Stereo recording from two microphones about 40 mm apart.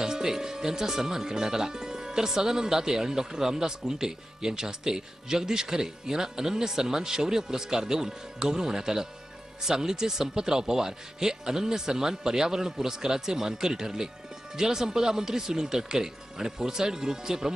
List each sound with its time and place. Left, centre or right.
0.0 s speech: centre